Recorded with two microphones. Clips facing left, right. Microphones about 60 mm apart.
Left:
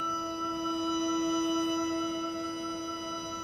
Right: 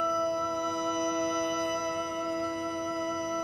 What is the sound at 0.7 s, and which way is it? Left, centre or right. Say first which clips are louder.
Music: right 1 dB; centre.